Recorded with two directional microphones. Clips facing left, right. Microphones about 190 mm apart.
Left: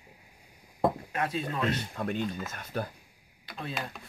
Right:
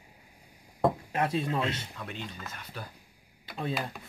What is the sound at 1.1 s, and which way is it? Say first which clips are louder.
Speech: right 3 dB; 25° right (ahead or behind).